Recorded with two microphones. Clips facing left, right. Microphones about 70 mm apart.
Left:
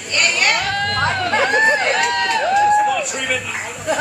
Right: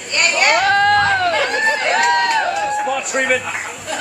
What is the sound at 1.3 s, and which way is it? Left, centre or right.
Chatter, left.